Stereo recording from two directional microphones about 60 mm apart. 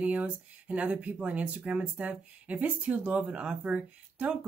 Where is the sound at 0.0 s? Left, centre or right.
Right.